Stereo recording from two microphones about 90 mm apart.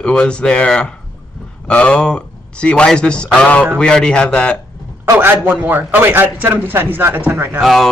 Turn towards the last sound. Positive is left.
turn(degrees=0)  # may be behind; listen again after turning